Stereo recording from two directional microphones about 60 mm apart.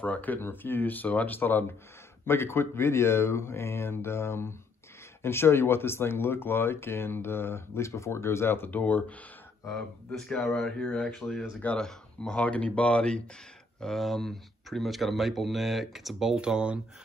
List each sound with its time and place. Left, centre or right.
0.0 s speech: left
2.2 s speech: left
9.7 s speech: centre
13.7 s speech: centre